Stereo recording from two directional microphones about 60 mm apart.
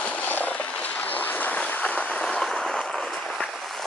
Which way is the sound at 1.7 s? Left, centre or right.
Left.